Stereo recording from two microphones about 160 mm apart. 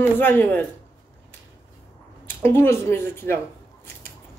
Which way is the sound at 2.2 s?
15° left (ahead or behind).